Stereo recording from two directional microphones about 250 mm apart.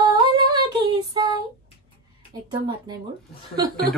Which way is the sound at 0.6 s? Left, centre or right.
Centre.